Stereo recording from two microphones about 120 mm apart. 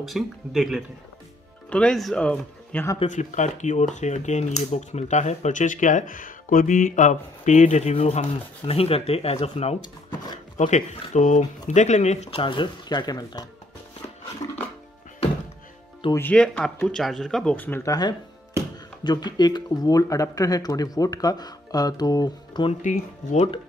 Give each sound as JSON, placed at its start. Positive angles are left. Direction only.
{"t": 0.0, "sound": "speech", "side_deg": 0}
{"t": 3.1, "sound": "speech", "side_deg": 85}
{"t": 9.8, "sound": "speech", "side_deg": 35}
{"t": 10.6, "sound": "speech", "side_deg": 90}
{"t": 12.4, "sound": "speech", "side_deg": 45}
{"t": 16.2, "sound": "speech", "side_deg": 10}
{"t": 17.6, "sound": "speech", "side_deg": 20}
{"t": 19.0, "sound": "speech", "side_deg": 35}
{"t": 22.8, "sound": "speech", "side_deg": 90}